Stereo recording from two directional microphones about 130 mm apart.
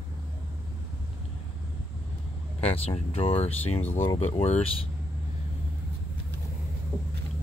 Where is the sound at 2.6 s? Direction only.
50° left (ahead or behind).